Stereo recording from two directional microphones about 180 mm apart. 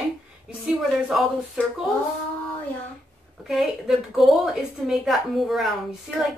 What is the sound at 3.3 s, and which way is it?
A woman's voice, centre (ahead or behind).